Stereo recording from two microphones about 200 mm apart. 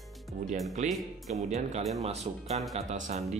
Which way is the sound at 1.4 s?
35° right (ahead or behind).